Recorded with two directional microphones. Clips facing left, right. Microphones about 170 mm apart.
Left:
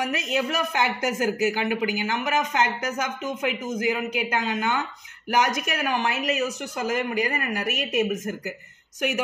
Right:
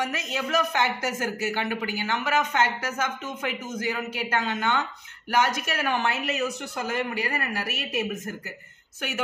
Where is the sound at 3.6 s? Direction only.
15° left (ahead or behind).